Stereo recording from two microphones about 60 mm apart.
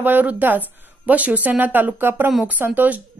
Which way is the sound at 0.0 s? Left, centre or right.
Right.